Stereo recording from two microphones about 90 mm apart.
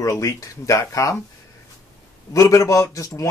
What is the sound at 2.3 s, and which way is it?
Speech, 40° left (ahead or behind).